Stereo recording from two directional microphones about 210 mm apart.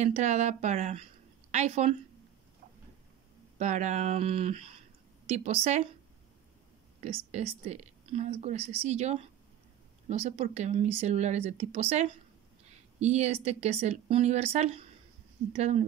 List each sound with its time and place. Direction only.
0.0 s speech: 35° right (ahead or behind)
3.5 s speech: 35° right (ahead or behind)
7.2 s speech: 30° right (ahead or behind)